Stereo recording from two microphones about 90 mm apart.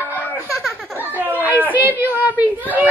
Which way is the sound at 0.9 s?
20° right (ahead or behind).